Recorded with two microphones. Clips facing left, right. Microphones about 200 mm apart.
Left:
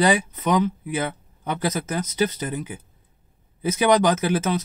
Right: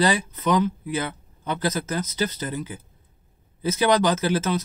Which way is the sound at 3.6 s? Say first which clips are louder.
Left 2 dB; 15° left (ahead or behind).